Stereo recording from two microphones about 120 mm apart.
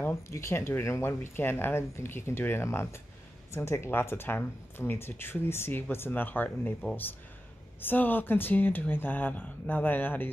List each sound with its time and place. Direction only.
0.0 s speech: 25° left (ahead or behind)
7.8 s speech: 15° left (ahead or behind)